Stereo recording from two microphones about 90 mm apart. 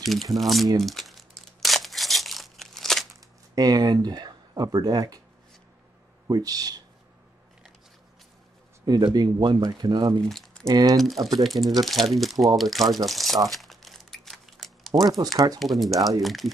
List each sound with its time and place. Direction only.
0.0 s speech: centre (ahead or behind)
0.7 s crumpling: centre (ahead or behind)
3.5 s speech: 45° right (ahead or behind)
6.2 s speech: 45° right (ahead or behind)
8.8 s speech: 50° right (ahead or behind)
10.2 s speech: centre (ahead or behind)
10.7 s speech: 50° right (ahead or behind)
11.0 s speech: centre (ahead or behind)
13.5 s crumpling: centre (ahead or behind)
15.0 s speech: 40° right (ahead or behind)
15.6 s speech: centre (ahead or behind)